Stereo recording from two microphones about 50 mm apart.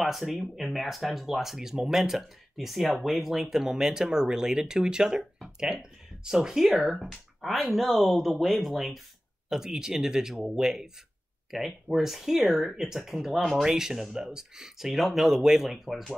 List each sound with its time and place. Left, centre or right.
0.0 s speech: centre
9.5 s speech: centre